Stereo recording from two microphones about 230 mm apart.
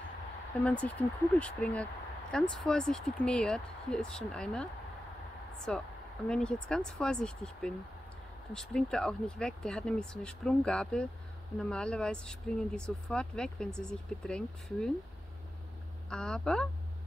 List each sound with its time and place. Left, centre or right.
0.7 s speech: centre
5.7 s speech: centre
16.1 s speech: centre